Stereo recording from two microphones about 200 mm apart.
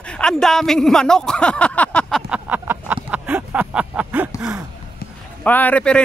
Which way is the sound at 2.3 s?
10° right (ahead or behind).